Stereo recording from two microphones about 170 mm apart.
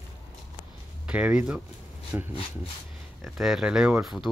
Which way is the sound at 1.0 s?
5° right (ahead or behind).